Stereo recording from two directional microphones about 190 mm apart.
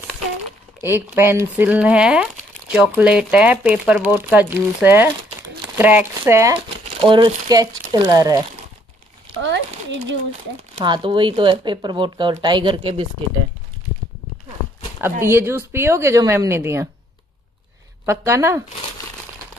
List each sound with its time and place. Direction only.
0.8 s speech: 10° right (ahead or behind)
7.0 s speech: 25° right (ahead or behind)
9.4 s a sound: 75° right (ahead or behind)
10.8 s speech: 25° right (ahead or behind)
15.2 s speech: 15° right (ahead or behind)
18.0 s speech: 15° right (ahead or behind)